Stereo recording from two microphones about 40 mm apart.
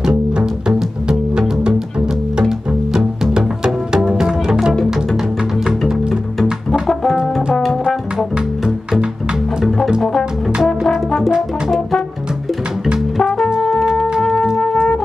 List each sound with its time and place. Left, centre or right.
3.3 s music: centre
6.7 s brass instrument: centre
10.6 s brass instrument: centre
13.6 s music: centre